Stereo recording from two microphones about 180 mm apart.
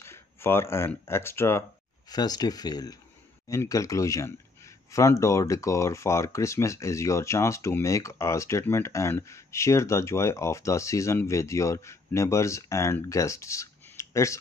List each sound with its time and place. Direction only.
0.0 s speech: 15° left (ahead or behind)